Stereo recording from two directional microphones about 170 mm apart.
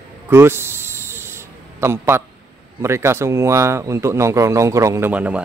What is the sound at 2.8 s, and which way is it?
Speech, 15° right (ahead or behind).